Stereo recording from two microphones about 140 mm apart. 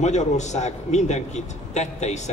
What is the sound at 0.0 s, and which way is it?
A man's voice, 55° left (ahead or behind).